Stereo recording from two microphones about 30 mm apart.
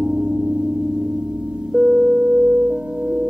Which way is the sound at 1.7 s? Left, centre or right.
Right.